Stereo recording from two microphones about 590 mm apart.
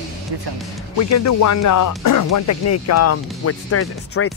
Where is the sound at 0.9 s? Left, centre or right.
Left.